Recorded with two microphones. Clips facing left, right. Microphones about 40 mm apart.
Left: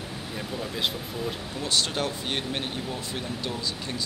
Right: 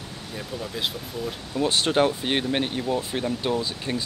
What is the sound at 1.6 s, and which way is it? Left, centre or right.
Speech, right.